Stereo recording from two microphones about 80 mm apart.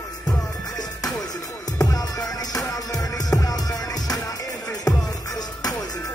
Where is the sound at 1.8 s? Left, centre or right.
Left.